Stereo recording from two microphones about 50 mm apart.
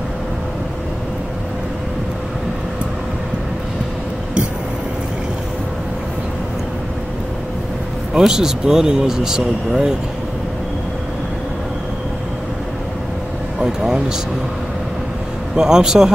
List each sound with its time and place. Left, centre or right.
8.2 s speech: centre
13.6 s speech: centre
15.5 s speech: centre